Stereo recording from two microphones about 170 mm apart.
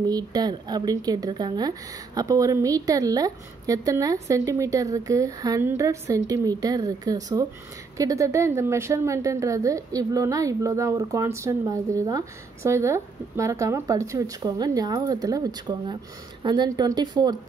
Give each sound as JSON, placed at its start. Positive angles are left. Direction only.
{"t": 0.0, "sound": "speech", "side_deg": -25}